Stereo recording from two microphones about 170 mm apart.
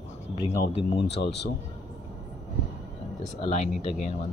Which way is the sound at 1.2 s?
80° left.